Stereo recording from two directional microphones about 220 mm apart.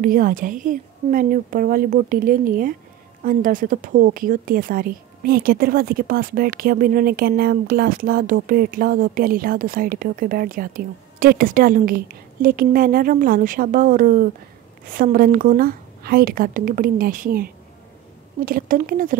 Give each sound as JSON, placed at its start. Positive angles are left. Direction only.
{"t": 0.0, "sound": "speech", "side_deg": -40}